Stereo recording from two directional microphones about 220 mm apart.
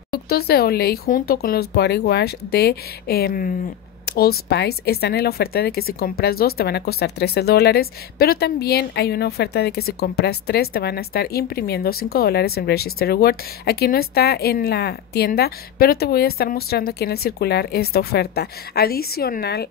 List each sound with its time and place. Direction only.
0.1 s speech: 45° left (ahead or behind)